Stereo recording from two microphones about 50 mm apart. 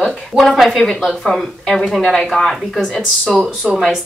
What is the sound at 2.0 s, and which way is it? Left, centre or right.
Speech, centre.